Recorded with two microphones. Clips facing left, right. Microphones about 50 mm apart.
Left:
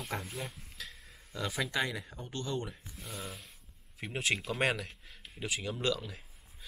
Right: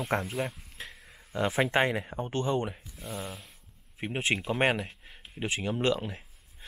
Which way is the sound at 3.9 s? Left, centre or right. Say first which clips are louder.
Right 4 dB; right.